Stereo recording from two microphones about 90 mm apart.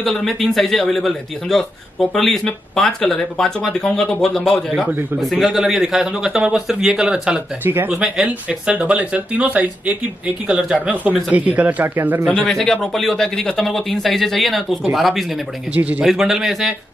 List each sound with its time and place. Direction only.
0.0 s speech: 5° left (ahead or behind)
7.6 s speech: 20° right (ahead or behind)
12.4 s speech: 5° left (ahead or behind)
15.7 s speech: 15° right (ahead or behind)
16.0 s speech: 5° right (ahead or behind)